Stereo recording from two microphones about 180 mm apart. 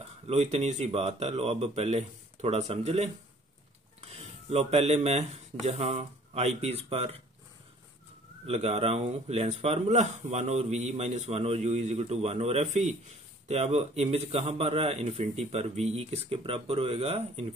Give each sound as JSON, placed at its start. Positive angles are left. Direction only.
{"t": 0.3, "sound": "speech", "side_deg": -35}
{"t": 4.5, "sound": "speech", "side_deg": -35}
{"t": 8.5, "sound": "speech", "side_deg": -35}